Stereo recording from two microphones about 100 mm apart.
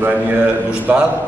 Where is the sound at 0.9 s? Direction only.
15° right (ahead or behind).